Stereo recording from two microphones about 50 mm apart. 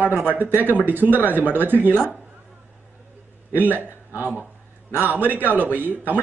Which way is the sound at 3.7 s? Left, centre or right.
Right.